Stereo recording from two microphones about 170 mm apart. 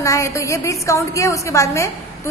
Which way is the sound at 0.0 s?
20° left (ahead or behind).